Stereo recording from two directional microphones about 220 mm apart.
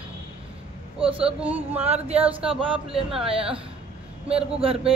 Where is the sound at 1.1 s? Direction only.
5° right (ahead or behind).